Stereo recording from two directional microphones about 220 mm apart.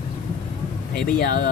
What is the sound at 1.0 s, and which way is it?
Speech, 45° left (ahead or behind).